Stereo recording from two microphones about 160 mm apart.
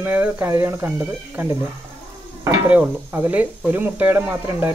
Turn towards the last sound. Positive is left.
turn(degrees=-15)  # may be behind; listen again after turning